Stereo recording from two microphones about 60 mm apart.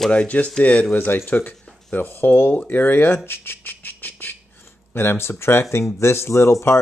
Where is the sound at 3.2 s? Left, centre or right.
Left.